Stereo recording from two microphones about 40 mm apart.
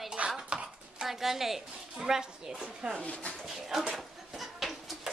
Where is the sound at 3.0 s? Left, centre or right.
Left.